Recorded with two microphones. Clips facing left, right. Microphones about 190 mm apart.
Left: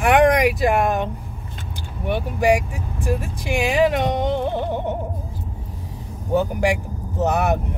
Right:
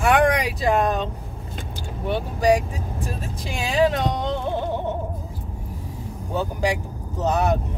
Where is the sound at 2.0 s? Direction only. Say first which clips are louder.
Left 1 dB; 15° left (ahead or behind).